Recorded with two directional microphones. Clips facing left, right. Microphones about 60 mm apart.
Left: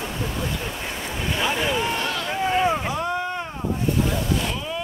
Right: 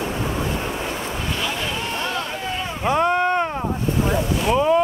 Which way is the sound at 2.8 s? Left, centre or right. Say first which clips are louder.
Right 7 dB; right.